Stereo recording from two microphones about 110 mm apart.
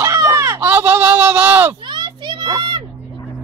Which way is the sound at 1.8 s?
45° right (ahead or behind).